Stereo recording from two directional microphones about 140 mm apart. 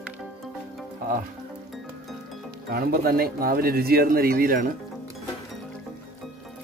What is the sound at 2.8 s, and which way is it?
A man's voice, 90° right.